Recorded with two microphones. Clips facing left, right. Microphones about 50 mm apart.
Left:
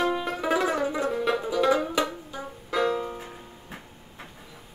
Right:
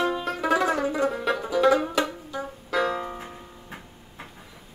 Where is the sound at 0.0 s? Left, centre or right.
Centre.